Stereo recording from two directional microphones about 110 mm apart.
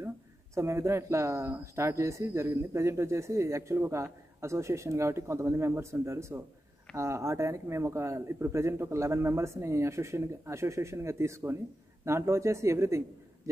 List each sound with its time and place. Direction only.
0.6 s speech: 25° right (ahead or behind)